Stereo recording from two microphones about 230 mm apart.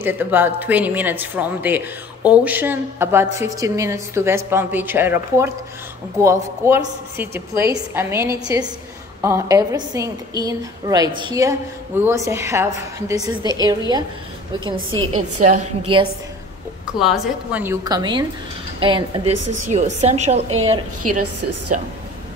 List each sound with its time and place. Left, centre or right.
0.0 s a woman's voice: centre
14.8 s a woman's voice: right
15.4 s a woman's voice: right
16.8 s a woman's voice: centre; by 19.3 s right
19.3 s speech: right
19.7 s a woman's voice: right
21.0 s a woman's voice: right